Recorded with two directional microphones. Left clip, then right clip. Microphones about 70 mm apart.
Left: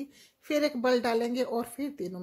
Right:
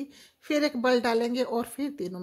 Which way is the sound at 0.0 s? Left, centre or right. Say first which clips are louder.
Right 3 dB; right.